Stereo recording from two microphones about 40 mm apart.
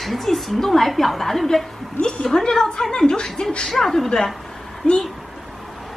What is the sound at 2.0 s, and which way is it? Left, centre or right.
Speech, centre.